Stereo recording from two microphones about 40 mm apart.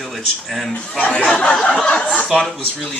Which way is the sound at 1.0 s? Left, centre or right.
Left.